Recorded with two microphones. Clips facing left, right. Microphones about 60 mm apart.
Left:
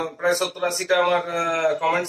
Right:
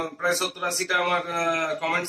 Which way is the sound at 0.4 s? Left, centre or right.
Left.